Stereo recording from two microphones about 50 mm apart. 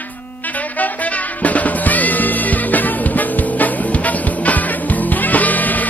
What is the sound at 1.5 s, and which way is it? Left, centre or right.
Music, left.